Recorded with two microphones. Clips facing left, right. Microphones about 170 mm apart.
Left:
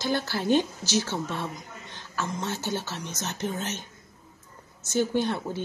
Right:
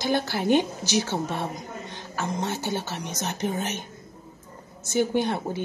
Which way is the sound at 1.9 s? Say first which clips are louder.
Right 1 dB; 15° right (ahead or behind).